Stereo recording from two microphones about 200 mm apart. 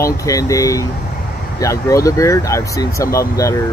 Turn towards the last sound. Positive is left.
turn(degrees=15)  # may be behind; listen again after turning